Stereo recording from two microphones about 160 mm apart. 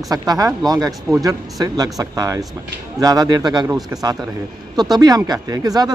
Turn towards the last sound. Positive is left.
turn(degrees=-25)  # may be behind; listen again after turning